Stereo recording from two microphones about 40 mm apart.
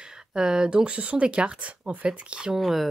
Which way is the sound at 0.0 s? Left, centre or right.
Centre.